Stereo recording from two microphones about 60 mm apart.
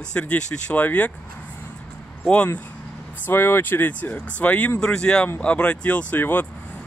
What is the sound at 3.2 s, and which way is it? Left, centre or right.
Speech, left.